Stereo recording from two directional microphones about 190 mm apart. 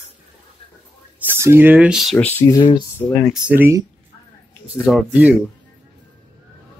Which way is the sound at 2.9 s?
10° left (ahead or behind).